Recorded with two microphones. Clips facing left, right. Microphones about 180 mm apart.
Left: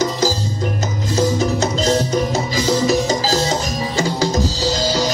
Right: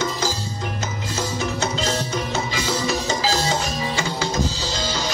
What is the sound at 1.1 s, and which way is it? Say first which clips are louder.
Music: left 9 dB; 40° left (ahead or behind).